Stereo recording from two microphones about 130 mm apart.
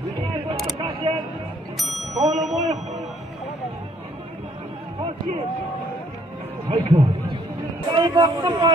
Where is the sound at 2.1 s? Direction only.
60° right (ahead or behind).